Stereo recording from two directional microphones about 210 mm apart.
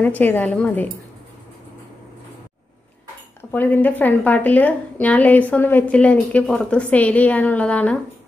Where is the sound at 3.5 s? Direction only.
10° left (ahead or behind).